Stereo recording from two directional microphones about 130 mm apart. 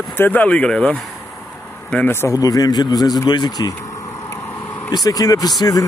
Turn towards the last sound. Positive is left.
turn(degrees=25)  # may be behind; listen again after turning